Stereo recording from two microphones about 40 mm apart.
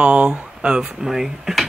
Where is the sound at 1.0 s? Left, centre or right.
Centre.